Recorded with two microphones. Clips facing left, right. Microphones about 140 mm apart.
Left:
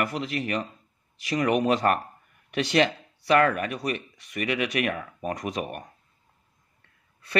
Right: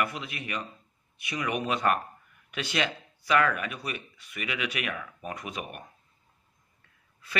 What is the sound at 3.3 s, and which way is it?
Speech, 40° left (ahead or behind).